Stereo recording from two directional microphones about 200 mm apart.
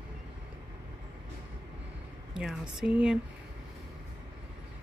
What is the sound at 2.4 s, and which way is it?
Speech, 5° right (ahead or behind).